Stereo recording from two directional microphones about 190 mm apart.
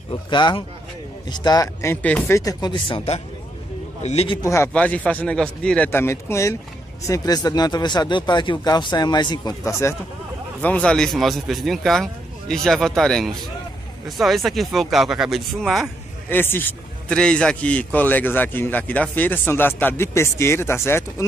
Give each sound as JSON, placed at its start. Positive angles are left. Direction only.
{"t": 0.1, "sound": "a man's voice", "side_deg": 25}
{"t": 4.4, "sound": "a man's voice", "side_deg": 15}